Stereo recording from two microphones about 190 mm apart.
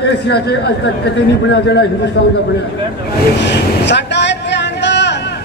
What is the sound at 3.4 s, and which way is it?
Vehicle, 65° left (ahead or behind).